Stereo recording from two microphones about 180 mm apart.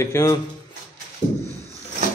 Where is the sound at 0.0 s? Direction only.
15° left (ahead or behind).